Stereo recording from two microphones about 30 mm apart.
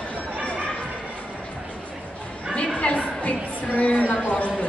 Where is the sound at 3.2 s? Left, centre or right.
Left.